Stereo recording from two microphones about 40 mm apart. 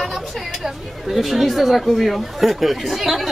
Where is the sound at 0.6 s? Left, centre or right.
Centre.